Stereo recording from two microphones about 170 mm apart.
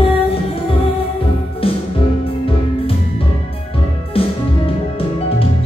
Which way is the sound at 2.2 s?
35° left (ahead or behind).